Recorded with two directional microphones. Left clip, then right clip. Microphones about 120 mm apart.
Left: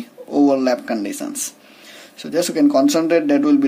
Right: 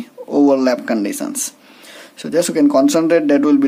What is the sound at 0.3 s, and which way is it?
Speech, 40° right (ahead or behind).